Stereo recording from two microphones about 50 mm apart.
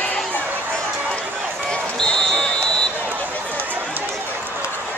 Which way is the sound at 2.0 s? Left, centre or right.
Centre.